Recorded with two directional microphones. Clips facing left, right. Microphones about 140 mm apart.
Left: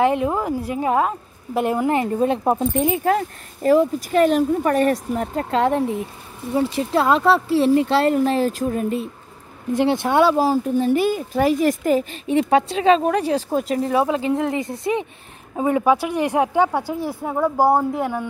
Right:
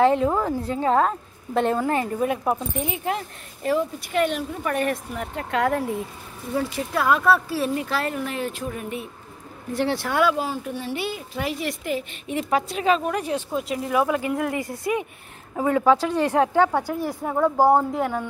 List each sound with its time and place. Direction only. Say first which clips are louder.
0.0 s a woman's voice: even; 20° left (ahead or behind)
2.8 s a woman's voice: left 8 dB; 45° left (ahead or behind)
9.7 s speech: left 6 dB; 20° left (ahead or behind)
10.3 s a woman's voice: left 9 dB; 35° left (ahead or behind); by 18.2 s 10° left (ahead or behind)